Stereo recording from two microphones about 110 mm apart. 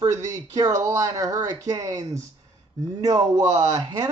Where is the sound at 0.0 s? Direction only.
35° right (ahead or behind).